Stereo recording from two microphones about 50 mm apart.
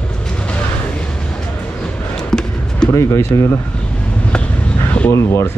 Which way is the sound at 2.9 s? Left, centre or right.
Left.